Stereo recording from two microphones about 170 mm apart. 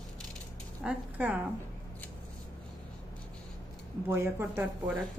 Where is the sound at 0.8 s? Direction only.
5° right (ahead or behind).